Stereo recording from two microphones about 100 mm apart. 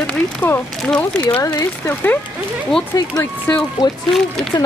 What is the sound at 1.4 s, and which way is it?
Speech, 35° left (ahead or behind).